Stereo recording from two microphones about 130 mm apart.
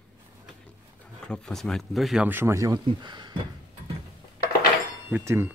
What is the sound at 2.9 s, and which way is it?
Speech, 35° right (ahead or behind).